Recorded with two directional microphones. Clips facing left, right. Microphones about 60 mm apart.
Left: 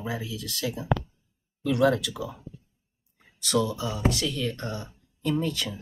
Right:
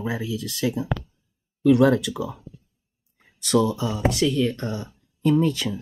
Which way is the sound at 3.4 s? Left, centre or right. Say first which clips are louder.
Right 5 dB; right.